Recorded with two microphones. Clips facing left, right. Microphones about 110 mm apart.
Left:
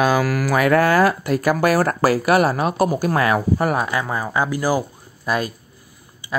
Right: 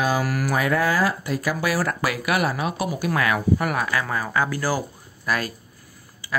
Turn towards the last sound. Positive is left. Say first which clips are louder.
# left 4 dB
turn(degrees=20)  # may be behind; listen again after turning